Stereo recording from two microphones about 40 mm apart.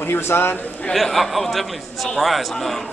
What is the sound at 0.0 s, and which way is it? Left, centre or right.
Speech, left.